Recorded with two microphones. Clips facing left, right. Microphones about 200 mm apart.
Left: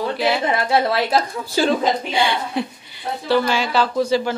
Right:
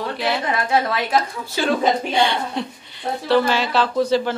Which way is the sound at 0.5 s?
30° left (ahead or behind).